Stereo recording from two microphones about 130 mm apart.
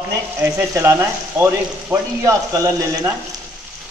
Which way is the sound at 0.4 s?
20° right (ahead or behind).